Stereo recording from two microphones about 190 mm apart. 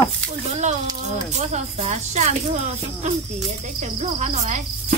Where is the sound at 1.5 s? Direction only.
35° right (ahead or behind).